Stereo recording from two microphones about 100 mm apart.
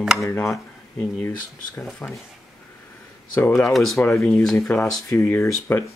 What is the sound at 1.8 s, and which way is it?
Speech, 10° left (ahead or behind).